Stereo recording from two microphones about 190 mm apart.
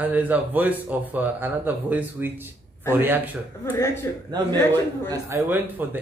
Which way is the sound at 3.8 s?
15° left (ahead or behind).